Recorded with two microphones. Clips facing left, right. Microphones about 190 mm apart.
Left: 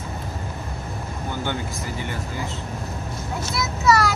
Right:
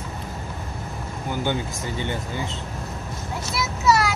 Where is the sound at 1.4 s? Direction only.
20° right (ahead or behind).